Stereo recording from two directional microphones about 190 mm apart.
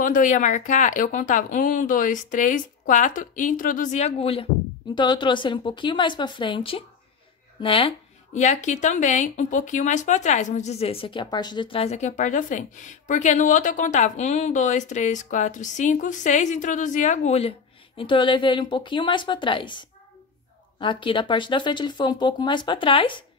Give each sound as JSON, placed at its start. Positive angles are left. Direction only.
{"t": 0.0, "sound": "speech", "side_deg": 45}
{"t": 8.4, "sound": "speech", "side_deg": 40}